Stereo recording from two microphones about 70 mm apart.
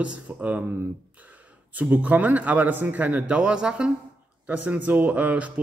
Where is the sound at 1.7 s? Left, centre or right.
Right.